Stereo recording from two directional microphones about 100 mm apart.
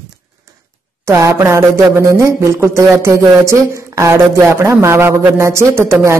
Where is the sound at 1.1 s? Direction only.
30° right (ahead or behind).